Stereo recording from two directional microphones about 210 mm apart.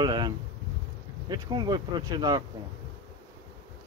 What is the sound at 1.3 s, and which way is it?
Speech, 20° right (ahead or behind).